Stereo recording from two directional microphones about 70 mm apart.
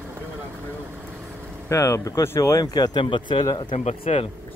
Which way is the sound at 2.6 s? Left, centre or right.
Left.